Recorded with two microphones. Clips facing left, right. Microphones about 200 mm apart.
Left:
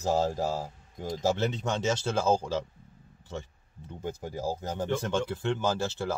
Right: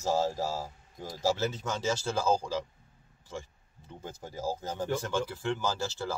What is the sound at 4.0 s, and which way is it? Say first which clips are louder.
Speech: left 5 dB; 15° left (ahead or behind).